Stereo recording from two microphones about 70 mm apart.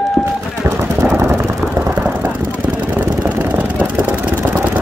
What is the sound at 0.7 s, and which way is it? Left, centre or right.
Vehicle, right.